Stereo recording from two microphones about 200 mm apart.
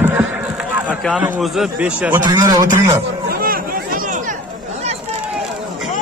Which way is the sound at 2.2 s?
20° right (ahead or behind).